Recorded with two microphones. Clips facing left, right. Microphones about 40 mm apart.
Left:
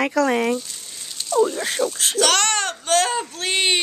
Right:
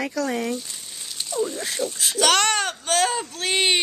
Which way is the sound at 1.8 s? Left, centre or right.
Left.